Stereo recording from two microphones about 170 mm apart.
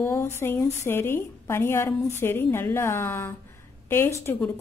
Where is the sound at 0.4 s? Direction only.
15° left (ahead or behind).